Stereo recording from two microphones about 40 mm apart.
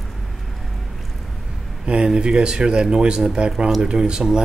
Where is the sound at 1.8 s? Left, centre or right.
Right.